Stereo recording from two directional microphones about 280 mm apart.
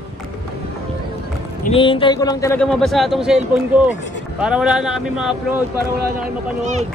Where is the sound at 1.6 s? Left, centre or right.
Centre.